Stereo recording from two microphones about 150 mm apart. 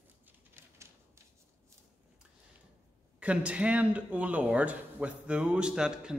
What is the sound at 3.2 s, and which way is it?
Speech, 10° right (ahead or behind).